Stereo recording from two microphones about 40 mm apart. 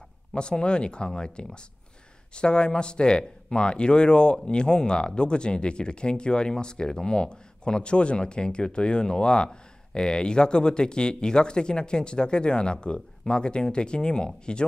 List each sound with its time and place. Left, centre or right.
0.3 s speech: left